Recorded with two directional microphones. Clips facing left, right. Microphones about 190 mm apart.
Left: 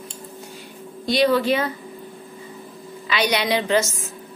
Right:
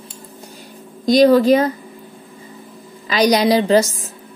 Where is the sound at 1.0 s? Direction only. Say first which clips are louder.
Right 8 dB; 40° right (ahead or behind).